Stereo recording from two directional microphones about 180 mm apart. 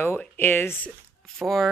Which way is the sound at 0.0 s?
10° left (ahead or behind).